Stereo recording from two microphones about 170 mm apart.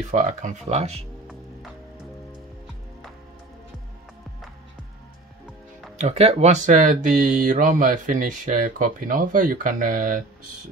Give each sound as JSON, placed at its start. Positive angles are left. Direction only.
{"t": 0.1, "sound": "speech", "side_deg": -45}
{"t": 5.9, "sound": "speech", "side_deg": -40}